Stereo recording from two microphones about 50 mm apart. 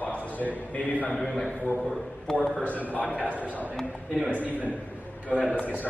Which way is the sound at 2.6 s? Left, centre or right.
Left.